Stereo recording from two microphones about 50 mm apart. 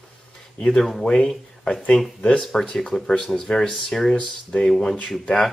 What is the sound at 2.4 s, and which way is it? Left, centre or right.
Speech, centre.